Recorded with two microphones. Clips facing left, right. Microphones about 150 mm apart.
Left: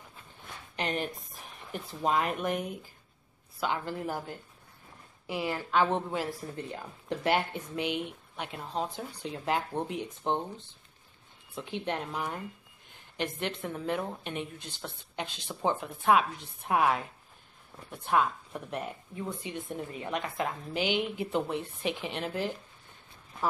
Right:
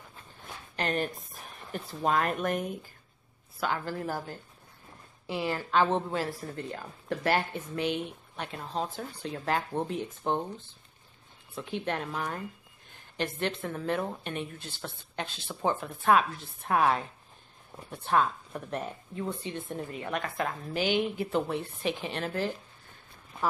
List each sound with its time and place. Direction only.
0.7 s speech: 15° left (ahead or behind)
3.9 s speech: 15° left (ahead or behind)
11.8 s speech: 20° left (ahead or behind)
18.0 s speech: 10° left (ahead or behind)